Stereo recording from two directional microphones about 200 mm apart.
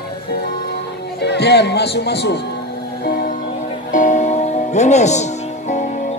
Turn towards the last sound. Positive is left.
turn(degrees=35)  # may be behind; listen again after turning